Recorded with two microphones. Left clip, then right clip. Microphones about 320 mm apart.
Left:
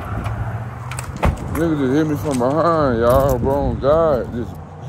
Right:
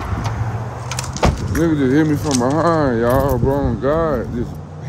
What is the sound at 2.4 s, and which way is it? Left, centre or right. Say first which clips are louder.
Speech: left 1 dB; centre.